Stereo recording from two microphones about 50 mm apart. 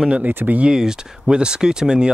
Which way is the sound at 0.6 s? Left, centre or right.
Centre.